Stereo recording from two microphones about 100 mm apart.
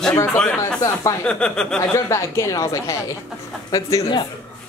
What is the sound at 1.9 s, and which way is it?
Speech, 30° left (ahead or behind).